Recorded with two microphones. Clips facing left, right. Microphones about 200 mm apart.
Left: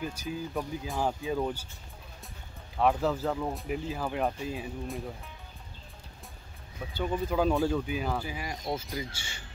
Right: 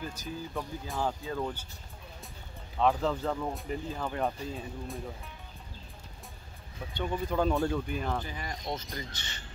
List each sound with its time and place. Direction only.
0.0 s speech: 10° left (ahead or behind)
2.8 s speech: 5° left (ahead or behind)
6.9 s speech: 5° left (ahead or behind)